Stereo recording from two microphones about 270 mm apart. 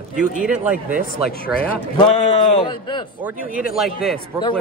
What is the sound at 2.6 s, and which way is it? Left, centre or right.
Speech, centre.